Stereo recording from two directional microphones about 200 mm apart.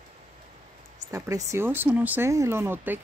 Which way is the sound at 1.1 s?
15° right (ahead or behind).